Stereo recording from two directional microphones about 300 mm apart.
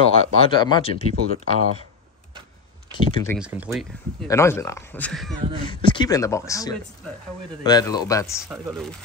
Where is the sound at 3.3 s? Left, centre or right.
Centre.